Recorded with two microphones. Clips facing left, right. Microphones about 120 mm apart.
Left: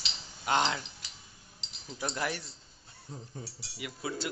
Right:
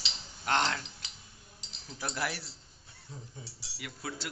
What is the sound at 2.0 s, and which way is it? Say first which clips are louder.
Speech: left 2 dB; 5° right (ahead or behind).